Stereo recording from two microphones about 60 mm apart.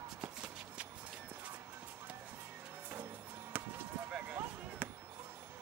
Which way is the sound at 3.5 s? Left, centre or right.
Right.